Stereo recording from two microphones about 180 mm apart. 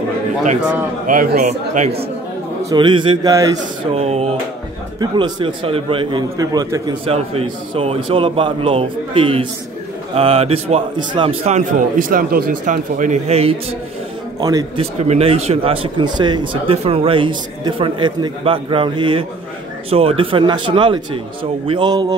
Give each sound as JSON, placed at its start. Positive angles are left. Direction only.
{"t": 1.0, "sound": "speech", "side_deg": -50}
{"t": 2.7, "sound": "a man's voice", "side_deg": -25}
{"t": 3.9, "sound": "a man's voice", "side_deg": -35}
{"t": 5.0, "sound": "a man's voice", "side_deg": -25}
{"t": 7.1, "sound": "a man's voice", "side_deg": -30}
{"t": 14.4, "sound": "a man's voice", "side_deg": -20}
{"t": 14.8, "sound": "a man's voice", "side_deg": -35}